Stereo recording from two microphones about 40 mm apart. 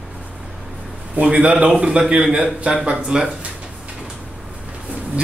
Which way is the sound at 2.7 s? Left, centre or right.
Centre.